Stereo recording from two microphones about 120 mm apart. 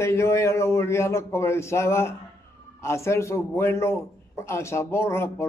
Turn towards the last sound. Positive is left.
turn(degrees=20)  # may be behind; listen again after turning